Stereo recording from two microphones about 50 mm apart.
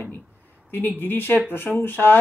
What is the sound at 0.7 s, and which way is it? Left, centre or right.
Speech, left.